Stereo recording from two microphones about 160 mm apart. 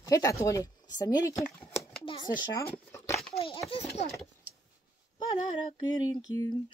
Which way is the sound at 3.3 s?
35° left (ahead or behind).